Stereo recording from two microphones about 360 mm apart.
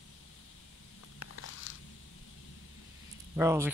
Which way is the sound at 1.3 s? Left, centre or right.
Left.